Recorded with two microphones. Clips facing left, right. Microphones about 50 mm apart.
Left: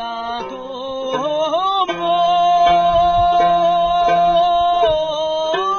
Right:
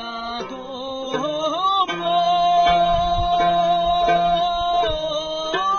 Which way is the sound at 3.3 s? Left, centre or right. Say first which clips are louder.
Left 4 dB; left.